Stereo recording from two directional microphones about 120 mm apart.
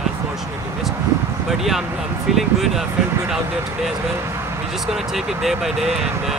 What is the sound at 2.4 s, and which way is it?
Speech, centre (ahead or behind).